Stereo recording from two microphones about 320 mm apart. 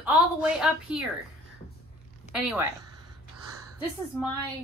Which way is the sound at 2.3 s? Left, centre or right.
Centre.